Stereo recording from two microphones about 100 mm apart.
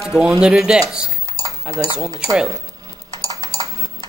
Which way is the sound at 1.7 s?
60° left (ahead or behind).